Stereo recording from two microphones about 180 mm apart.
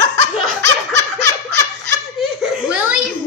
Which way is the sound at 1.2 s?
70° right (ahead or behind).